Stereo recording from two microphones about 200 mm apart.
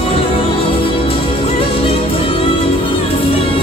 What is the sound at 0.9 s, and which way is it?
Music, 25° left (ahead or behind).